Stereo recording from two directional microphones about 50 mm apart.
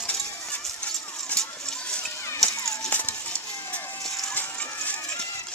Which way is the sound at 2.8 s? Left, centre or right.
Left.